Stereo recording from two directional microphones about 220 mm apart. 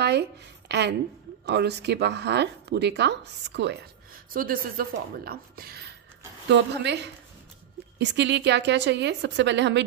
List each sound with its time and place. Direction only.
0.7 s a woman's voice: 50° right (ahead or behind)